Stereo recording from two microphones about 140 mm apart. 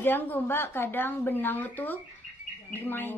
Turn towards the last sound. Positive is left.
turn(degrees=15)  # may be behind; listen again after turning